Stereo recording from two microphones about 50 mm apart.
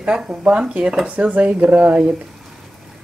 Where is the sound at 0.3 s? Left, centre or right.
Right.